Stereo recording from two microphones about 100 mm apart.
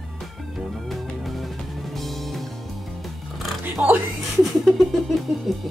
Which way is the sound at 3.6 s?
20° right (ahead or behind).